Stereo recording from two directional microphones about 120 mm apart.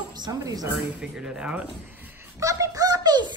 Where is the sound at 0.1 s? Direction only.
35° right (ahead or behind).